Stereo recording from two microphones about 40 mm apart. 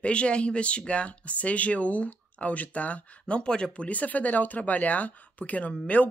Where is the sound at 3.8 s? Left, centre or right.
Left.